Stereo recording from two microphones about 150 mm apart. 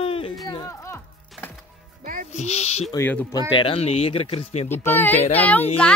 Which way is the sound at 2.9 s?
15° left (ahead or behind).